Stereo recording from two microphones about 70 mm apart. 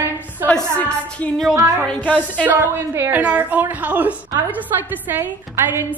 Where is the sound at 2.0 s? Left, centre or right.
Left.